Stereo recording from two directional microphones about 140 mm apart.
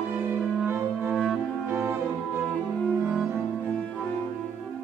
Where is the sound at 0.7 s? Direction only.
15° right (ahead or behind).